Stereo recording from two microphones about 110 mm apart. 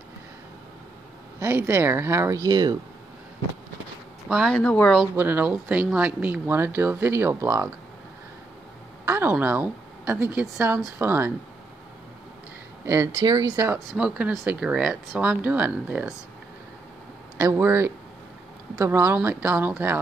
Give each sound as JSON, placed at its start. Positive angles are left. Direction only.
{"t": 1.4, "sound": "speech", "side_deg": -20}
{"t": 4.3, "sound": "speech", "side_deg": -5}
{"t": 4.6, "sound": "speech", "side_deg": 10}
{"t": 5.1, "sound": "speech", "side_deg": -15}
{"t": 9.0, "sound": "a woman's voice", "side_deg": -20}
{"t": 12.8, "sound": "speech", "side_deg": -25}
{"t": 13.2, "sound": "speech", "side_deg": -40}
{"t": 13.9, "sound": "speech", "side_deg": -10}
{"t": 17.4, "sound": "speech", "side_deg": -25}